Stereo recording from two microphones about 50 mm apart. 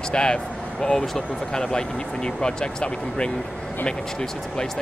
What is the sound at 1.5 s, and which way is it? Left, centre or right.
Speech, centre.